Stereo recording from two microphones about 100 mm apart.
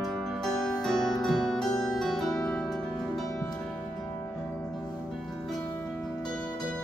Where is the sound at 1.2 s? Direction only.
5° left (ahead or behind).